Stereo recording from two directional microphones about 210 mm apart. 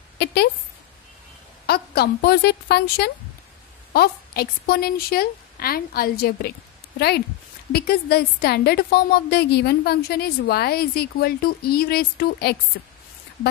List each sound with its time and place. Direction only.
0.2 s a woman's voice: 50° left (ahead or behind)
1.7 s a woman's voice: 50° left (ahead or behind)